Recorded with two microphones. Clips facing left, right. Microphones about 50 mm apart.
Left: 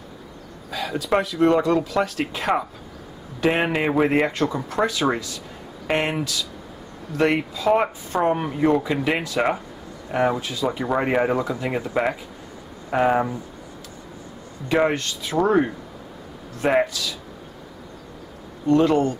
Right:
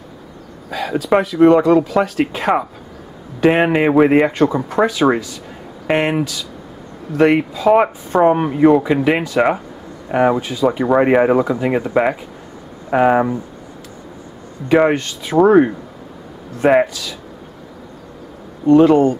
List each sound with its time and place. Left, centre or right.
0.7 s speech: centre
14.7 s speech: centre
18.7 s speech: centre